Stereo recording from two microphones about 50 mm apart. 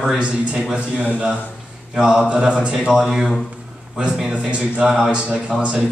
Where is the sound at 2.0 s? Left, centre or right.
Centre.